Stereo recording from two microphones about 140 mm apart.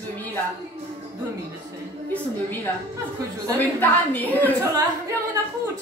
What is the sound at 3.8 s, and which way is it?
Speech, 15° left (ahead or behind).